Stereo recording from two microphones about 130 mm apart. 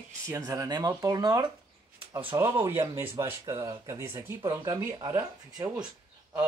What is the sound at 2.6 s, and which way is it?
Speech, 20° right (ahead or behind).